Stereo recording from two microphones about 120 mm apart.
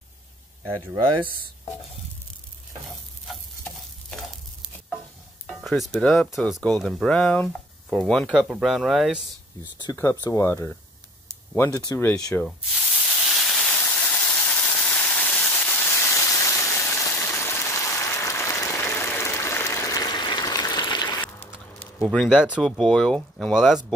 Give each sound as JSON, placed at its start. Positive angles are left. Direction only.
{"t": 3.3, "sound": "stir", "side_deg": 5}
{"t": 5.5, "sound": "speech", "side_deg": 0}
{"t": 9.9, "sound": "speech", "side_deg": 20}
{"t": 12.4, "sound": "hiss", "side_deg": -5}
{"t": 13.8, "sound": "a sound", "side_deg": 15}
{"t": 22.0, "sound": "speech", "side_deg": 5}